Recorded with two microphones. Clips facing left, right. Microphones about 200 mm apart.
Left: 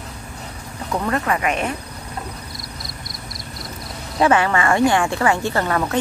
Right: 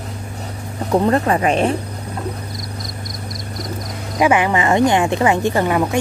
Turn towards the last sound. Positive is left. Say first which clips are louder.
# right 4 dB
turn(degrees=-15)  # may be behind; listen again after turning